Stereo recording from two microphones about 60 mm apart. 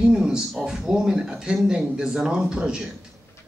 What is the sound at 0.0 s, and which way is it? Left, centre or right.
Speech, centre.